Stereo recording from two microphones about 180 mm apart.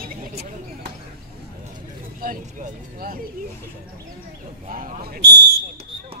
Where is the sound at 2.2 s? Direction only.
55° right (ahead or behind).